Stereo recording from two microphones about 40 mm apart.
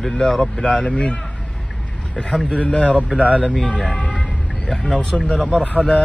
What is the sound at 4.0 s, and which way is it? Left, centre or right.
Vehicle, left.